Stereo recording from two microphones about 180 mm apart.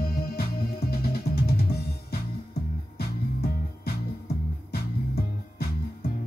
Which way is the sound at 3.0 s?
60° left (ahead or behind).